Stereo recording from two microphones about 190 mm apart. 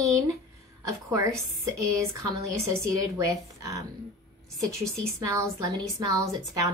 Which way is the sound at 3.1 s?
15° right (ahead or behind).